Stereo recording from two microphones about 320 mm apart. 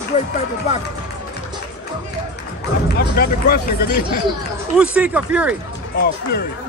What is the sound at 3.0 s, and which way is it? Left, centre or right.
Speech, left.